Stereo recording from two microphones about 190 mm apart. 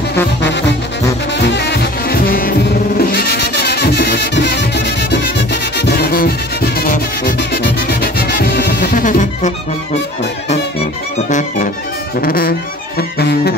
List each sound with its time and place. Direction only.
0.4 s brass instrument: 65° left (ahead or behind)
1.4 s music: 60° left (ahead or behind); by 9.5 s 40° left (ahead or behind)
11.2 s music: 45° left (ahead or behind); by 13.6 s 60° left (ahead or behind)